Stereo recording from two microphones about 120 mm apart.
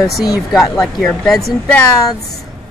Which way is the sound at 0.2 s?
30° left (ahead or behind).